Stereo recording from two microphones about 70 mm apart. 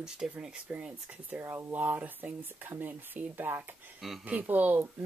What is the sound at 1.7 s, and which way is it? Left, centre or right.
Speech, right.